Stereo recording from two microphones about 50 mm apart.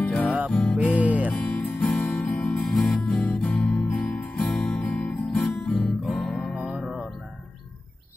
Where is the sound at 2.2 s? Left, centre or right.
Left.